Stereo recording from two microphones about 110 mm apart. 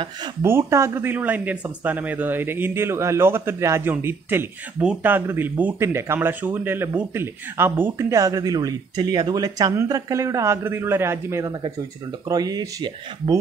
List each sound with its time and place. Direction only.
0.4 s speech: 25° right (ahead or behind)
12.3 s speech: 35° right (ahead or behind)